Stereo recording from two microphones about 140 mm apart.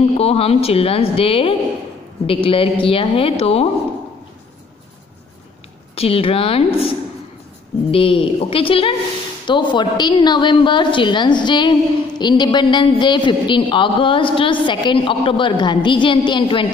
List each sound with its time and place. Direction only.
0.2 s a woman's voice: 45° left (ahead or behind)
5.9 s a woman's voice: 45° left (ahead or behind)
7.9 s a woman's voice: 40° left (ahead or behind)